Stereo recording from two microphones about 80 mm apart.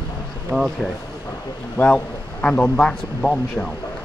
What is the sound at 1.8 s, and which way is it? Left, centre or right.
A man's voice, left.